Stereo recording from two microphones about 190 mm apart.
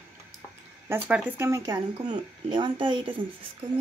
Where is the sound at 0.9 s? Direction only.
10° right (ahead or behind); by 3.5 s 25° right (ahead or behind).